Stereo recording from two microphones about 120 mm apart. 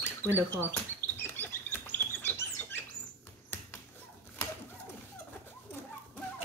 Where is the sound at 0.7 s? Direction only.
15° left (ahead or behind).